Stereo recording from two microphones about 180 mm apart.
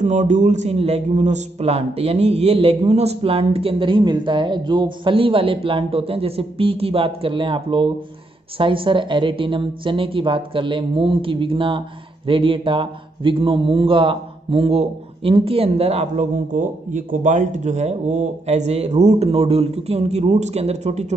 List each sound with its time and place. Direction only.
0.0 s a man's voice: 40° right (ahead or behind)